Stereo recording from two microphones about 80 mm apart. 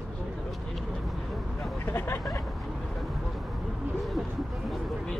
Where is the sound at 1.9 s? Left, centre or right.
Left.